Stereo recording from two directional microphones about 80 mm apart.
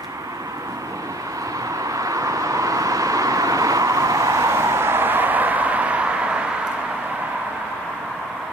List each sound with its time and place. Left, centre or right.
1.9 s vehicle: right; by 6.4 s centre